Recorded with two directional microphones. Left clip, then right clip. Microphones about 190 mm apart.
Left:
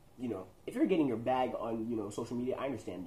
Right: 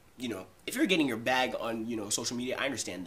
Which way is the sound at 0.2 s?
15° right (ahead or behind).